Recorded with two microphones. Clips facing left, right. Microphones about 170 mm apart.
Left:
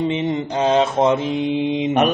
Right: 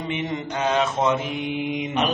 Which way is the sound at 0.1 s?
30° left (ahead or behind).